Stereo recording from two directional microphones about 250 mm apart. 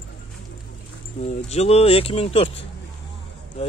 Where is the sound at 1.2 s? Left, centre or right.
Left.